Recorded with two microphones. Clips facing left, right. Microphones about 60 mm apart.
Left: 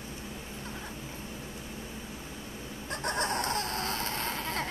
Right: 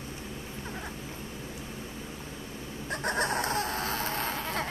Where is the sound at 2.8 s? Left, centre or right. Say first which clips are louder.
Right 2 dB; centre.